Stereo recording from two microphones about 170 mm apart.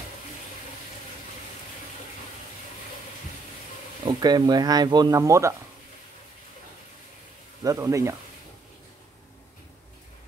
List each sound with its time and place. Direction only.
4.0 s speech: 25° right (ahead or behind)
7.6 s speech: 20° right (ahead or behind)